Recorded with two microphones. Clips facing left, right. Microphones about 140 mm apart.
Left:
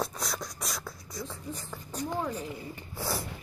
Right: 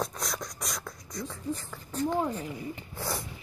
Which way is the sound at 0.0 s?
Centre (ahead or behind).